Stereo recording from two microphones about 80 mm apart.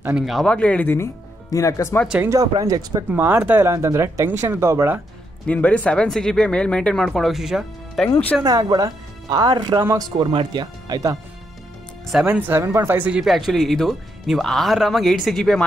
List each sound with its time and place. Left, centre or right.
0.2 s speech: centre
0.5 s speech: centre
0.9 s speech: left
2.6 s speech: right
3.1 s speech: right
3.6 s speech: right
5.5 s speech: centre
7.1 s speech: centre
8.5 s speech: right
12.3 s speech: right
13.2 s speech: centre